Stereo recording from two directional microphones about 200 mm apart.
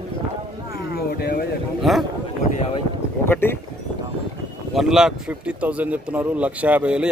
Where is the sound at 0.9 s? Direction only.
50° left (ahead or behind).